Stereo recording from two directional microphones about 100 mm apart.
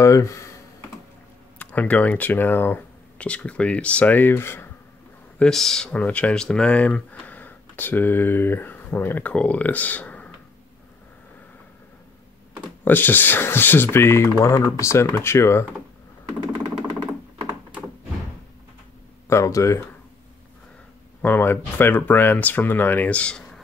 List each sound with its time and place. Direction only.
0.0 s computer keyboard: 30° left (ahead or behind)
1.6 s speech: 15° left (ahead or behind)
5.4 s speech: 5° left (ahead or behind)
12.8 s speech: 20° left (ahead or behind)
19.2 s speech: 30° left (ahead or behind)
21.2 s speech: 20° left (ahead or behind)